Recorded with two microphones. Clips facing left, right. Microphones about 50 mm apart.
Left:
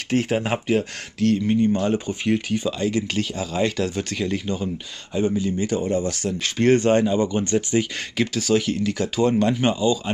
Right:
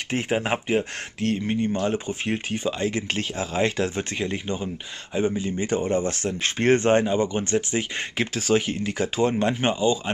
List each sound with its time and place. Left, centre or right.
0.1 s speech: right
1.2 s speech: right